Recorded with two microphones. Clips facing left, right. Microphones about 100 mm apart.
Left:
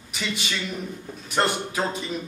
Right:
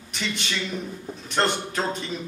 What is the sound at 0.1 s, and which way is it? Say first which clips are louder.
A man's voice: even; 5° left (ahead or behind).